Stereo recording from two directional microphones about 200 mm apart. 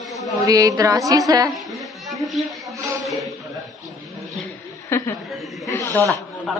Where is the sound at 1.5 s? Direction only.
Centre (ahead or behind).